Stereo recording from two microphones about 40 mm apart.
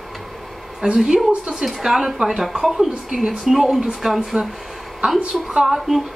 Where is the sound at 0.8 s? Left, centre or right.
Right.